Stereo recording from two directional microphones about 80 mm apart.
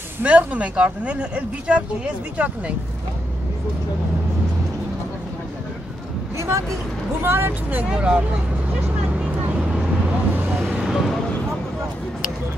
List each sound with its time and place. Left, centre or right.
0.2 s speech: centre
6.3 s vehicle: right
7.2 s speech: right
7.9 s speech: centre
9.1 s vehicle: centre
10.8 s vehicle: centre